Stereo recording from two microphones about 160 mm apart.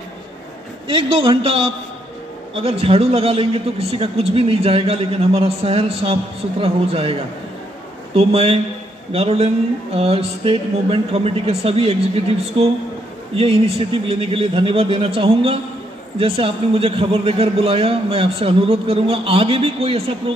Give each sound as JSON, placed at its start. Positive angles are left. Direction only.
{"t": 0.8, "sound": "a man's voice", "side_deg": -30}
{"t": 13.4, "sound": "a man's voice", "side_deg": -40}